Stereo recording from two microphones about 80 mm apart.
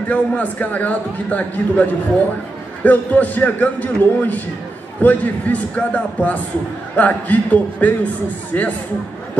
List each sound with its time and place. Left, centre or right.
0.1 s a man's voice: centre